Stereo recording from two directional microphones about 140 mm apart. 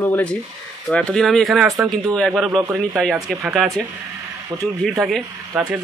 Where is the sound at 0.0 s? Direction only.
10° left (ahead or behind).